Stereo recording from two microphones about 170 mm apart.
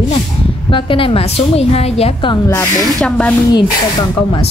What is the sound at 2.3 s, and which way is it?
Speech, 20° left (ahead or behind).